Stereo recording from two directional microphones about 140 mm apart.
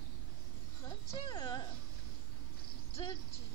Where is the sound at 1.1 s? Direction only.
30° left (ahead or behind).